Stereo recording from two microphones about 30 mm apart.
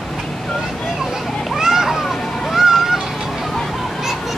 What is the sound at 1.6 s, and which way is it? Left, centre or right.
Splash, centre.